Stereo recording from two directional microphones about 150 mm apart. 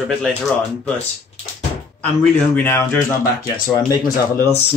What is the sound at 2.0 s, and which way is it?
Speech, 10° left (ahead or behind).